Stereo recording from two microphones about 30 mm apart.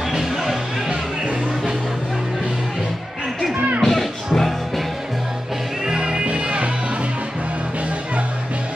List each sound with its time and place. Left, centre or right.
3.8 s music: centre
5.9 s music: right
6.4 s music: right